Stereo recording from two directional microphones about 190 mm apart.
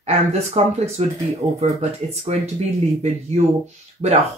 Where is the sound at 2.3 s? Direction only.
35° right (ahead or behind).